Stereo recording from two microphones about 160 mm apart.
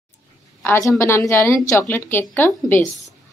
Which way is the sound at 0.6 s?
15° left (ahead or behind).